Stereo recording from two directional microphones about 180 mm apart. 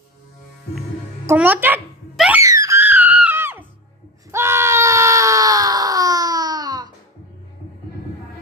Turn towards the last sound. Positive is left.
turn(degrees=-20)  # may be behind; listen again after turning